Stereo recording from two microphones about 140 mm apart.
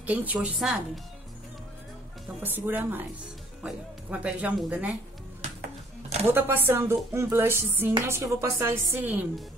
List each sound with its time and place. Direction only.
0.0 s a woman's voice: 10° right (ahead or behind)
2.4 s speech: 15° right (ahead or behind)
6.2 s speech: 15° right (ahead or behind)